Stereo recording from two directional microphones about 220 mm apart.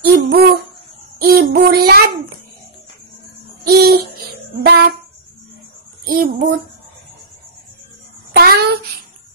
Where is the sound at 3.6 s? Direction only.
45° right (ahead or behind).